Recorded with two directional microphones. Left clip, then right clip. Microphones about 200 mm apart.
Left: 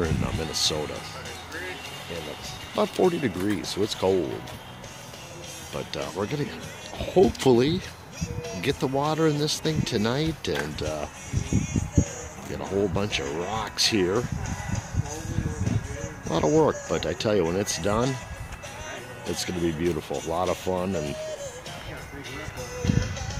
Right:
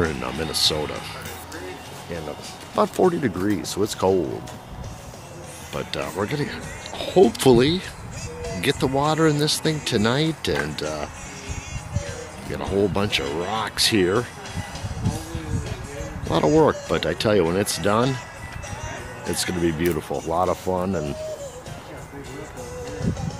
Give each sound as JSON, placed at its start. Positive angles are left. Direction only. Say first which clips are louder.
{"t": 0.0, "sound": "speech", "louder": "right 4 dB", "side_deg": 0}
{"t": 3.0, "sound": "speech", "louder": "right 3 dB", "side_deg": 10}
{"t": 5.7, "sound": "speech", "louder": "right 4 dB", "side_deg": 0}
{"t": 12.5, "sound": "speech", "louder": "right 4 dB", "side_deg": 0}
{"t": 16.3, "sound": "speech", "louder": "right 4 dB", "side_deg": 0}
{"t": 19.2, "sound": "speech", "louder": "right 4 dB", "side_deg": 0}
{"t": 22.8, "sound": "music", "louder": "even", "side_deg": 25}